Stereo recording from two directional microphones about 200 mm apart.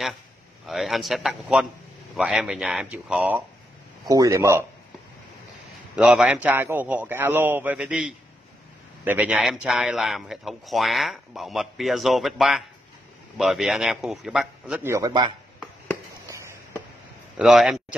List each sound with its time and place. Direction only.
0.7 s a man's voice: centre (ahead or behind)
5.9 s a man's voice: 5° right (ahead or behind)
14.9 s a man's voice: 15° right (ahead or behind)
16.3 s a sound: 15° right (ahead or behind)
17.4 s a man's voice: centre (ahead or behind)